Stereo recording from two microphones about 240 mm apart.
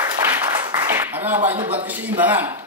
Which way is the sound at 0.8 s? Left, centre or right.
Centre.